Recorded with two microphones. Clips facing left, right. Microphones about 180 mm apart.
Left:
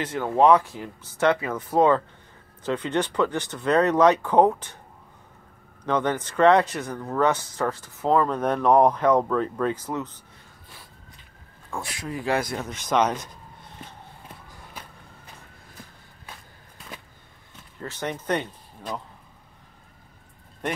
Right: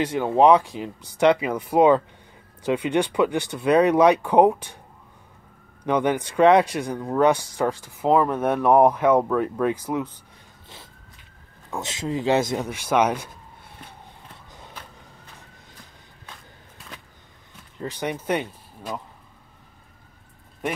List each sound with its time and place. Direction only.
0.0 s speech: 15° right (ahead or behind)
5.9 s speech: 10° right (ahead or behind)
11.7 s speech: 20° right (ahead or behind)
12.6 s speech: 10° right (ahead or behind)
17.7 s speech: 15° right (ahead or behind)